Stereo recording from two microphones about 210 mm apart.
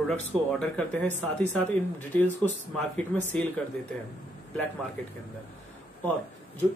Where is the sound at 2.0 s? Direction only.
5° left (ahead or behind).